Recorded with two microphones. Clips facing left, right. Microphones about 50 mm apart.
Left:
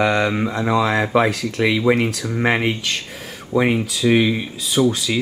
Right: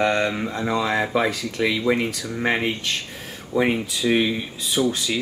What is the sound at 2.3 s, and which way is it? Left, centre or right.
Speech, centre.